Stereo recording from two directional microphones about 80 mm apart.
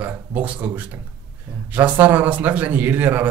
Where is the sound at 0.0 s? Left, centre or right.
Right.